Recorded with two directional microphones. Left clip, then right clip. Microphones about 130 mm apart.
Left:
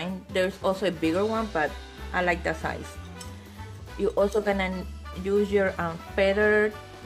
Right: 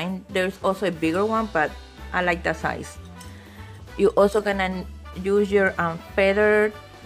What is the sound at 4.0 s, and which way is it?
Speech, 60° right (ahead or behind).